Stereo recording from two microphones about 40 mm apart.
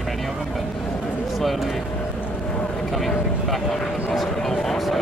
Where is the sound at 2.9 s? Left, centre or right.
Centre.